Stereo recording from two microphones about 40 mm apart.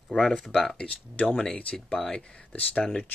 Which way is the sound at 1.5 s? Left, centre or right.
Left.